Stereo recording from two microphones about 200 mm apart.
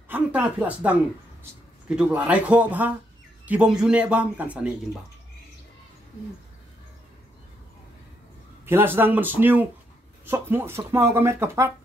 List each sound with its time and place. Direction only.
0.1 s speech: 10° right (ahead or behind)
8.6 s speech: 10° right (ahead or behind)